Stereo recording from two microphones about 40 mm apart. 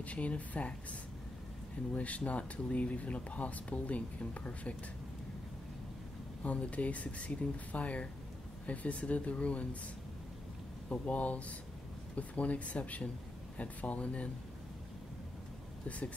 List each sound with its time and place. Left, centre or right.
0.0 s speech: left
2.0 s speech: left
6.4 s speech: left
10.9 s speech: left